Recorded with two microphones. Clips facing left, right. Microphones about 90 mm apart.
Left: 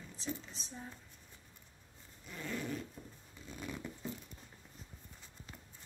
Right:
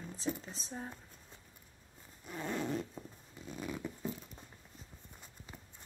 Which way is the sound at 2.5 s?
25° right (ahead or behind).